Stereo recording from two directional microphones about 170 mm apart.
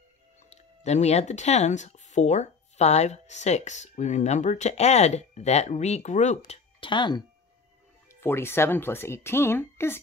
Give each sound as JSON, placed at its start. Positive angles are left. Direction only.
{"t": 0.5, "sound": "speech", "side_deg": 40}
{"t": 8.1, "sound": "speech", "side_deg": 15}